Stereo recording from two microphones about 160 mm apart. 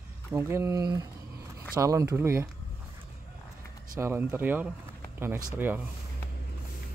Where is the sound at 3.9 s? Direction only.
15° right (ahead or behind).